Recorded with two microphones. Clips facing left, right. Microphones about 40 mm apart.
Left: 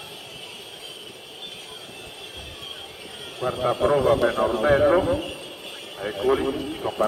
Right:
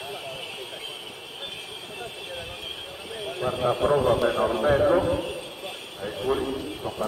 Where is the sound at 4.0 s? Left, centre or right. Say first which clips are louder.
Left 2 dB; centre.